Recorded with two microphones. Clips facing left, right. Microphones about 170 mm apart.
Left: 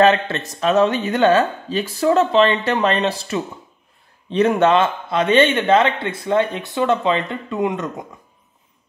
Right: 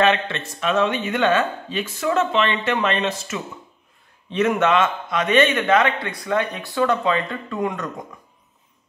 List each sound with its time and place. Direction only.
0.0 s a man's voice: 40° left (ahead or behind); by 7.9 s 20° left (ahead or behind)